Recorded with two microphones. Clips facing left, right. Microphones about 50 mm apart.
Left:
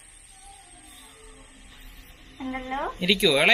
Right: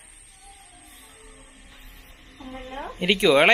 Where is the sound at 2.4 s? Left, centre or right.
Left.